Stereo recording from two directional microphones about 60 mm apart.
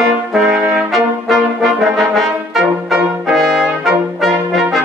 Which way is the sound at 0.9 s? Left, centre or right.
Centre.